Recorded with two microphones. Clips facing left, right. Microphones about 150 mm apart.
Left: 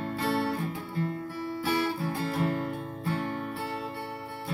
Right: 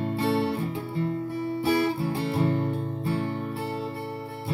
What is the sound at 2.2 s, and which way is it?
Music, 30° right (ahead or behind).